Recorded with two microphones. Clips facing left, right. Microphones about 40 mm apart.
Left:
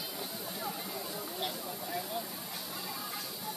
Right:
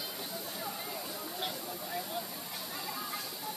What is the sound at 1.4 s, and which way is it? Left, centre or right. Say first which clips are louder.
Speech: even; centre.